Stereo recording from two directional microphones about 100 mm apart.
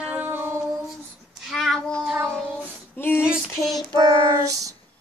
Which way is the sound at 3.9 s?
40° right (ahead or behind).